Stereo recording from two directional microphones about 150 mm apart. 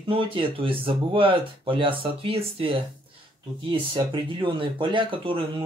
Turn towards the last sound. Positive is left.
turn(degrees=-35)  # may be behind; listen again after turning